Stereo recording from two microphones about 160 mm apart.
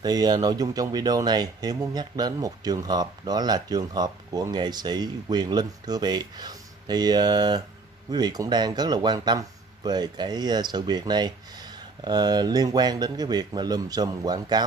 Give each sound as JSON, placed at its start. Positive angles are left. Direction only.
{"t": 0.0, "sound": "speech", "side_deg": -25}